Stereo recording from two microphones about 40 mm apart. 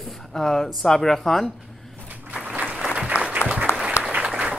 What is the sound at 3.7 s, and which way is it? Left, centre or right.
Applause, left.